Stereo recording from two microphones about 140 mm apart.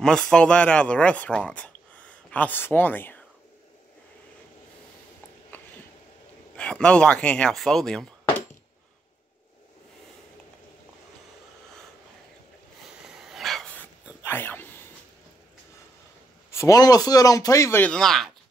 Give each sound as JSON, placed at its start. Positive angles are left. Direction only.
{"t": 0.0, "sound": "speech", "side_deg": 5}
{"t": 6.5, "sound": "speech", "side_deg": 5}
{"t": 13.0, "sound": "dog", "side_deg": -5}
{"t": 14.2, "sound": "a sound", "side_deg": 15}
{"t": 16.4, "sound": "a man's voice", "side_deg": 20}
{"t": 17.9, "sound": "speech", "side_deg": 0}